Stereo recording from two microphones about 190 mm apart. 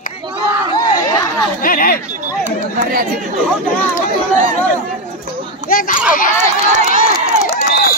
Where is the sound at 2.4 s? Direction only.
40° right (ahead or behind).